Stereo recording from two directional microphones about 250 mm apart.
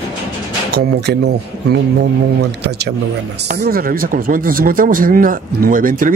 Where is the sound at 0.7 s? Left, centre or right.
Right.